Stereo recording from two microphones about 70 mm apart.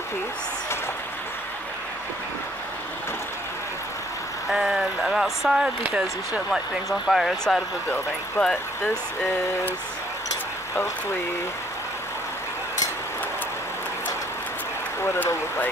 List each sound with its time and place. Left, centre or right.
4.5 s speech: centre
5.9 s speech: centre
6.5 s speech: centre
8.4 s speech: centre